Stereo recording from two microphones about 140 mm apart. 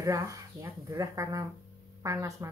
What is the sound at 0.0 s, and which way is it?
Speech, 25° right (ahead or behind).